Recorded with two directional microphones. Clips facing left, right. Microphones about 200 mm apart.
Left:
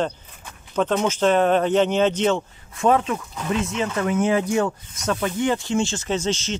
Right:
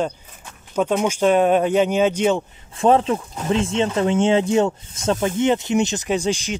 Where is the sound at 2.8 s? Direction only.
30° right (ahead or behind).